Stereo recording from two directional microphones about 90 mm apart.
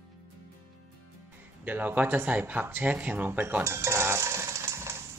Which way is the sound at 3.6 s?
30° right (ahead or behind).